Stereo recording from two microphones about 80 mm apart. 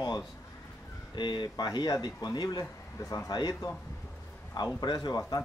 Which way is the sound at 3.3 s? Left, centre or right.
Left.